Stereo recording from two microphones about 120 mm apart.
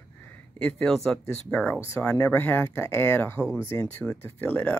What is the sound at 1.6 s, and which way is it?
Speech, 15° left (ahead or behind).